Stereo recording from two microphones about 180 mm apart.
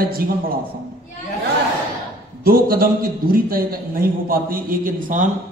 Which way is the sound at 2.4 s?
55° right (ahead or behind).